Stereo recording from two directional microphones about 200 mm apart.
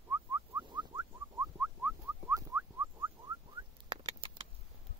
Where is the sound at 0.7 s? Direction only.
20° right (ahead or behind).